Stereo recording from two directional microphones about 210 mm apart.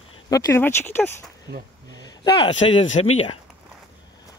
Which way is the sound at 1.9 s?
20° left (ahead or behind).